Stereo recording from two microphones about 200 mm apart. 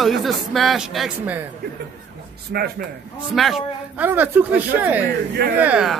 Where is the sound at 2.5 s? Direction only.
50° right (ahead or behind).